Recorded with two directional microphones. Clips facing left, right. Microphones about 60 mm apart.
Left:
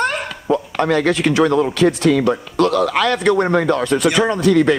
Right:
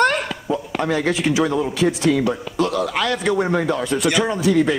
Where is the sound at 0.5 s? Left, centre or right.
Left.